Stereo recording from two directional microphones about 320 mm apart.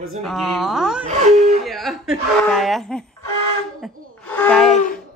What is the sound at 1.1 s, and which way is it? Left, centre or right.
Speech, right.